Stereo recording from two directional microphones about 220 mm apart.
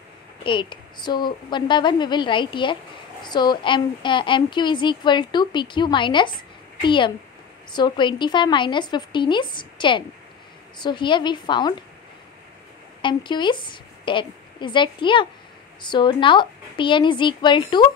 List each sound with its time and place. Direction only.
0.4 s a woman's voice: 20° left (ahead or behind)
13.0 s a woman's voice: 20° left (ahead or behind)